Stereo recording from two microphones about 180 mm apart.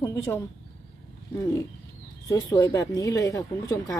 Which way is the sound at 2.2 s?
20° left (ahead or behind).